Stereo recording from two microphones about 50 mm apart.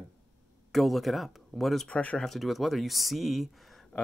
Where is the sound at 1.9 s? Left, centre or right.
Left.